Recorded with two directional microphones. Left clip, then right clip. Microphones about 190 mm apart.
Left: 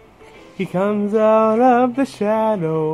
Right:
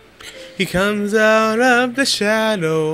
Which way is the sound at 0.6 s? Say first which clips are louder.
Right 2 dB; 15° right (ahead or behind).